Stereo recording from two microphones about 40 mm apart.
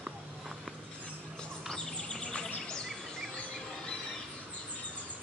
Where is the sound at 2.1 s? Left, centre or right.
Left.